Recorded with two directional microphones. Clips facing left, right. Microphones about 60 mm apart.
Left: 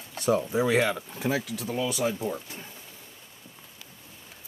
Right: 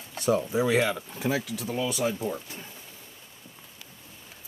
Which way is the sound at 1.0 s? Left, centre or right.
Left.